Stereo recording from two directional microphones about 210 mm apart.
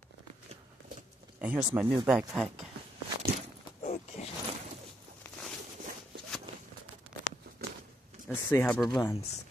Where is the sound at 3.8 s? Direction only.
30° left (ahead or behind).